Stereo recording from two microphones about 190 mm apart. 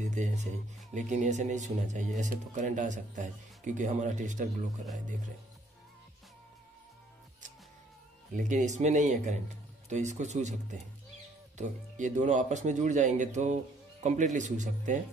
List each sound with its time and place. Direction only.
0.0 s speech: 40° right (ahead or behind)
8.6 s speech: 40° right (ahead or behind)